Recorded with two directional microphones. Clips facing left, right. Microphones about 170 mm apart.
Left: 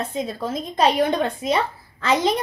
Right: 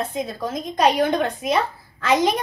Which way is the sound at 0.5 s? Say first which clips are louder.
Even; 25° left (ahead or behind).